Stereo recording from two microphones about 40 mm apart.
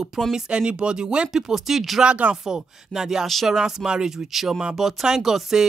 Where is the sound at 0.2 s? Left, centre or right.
Centre.